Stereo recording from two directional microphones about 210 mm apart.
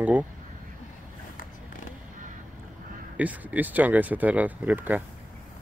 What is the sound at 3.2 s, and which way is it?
Speech, 5° right (ahead or behind).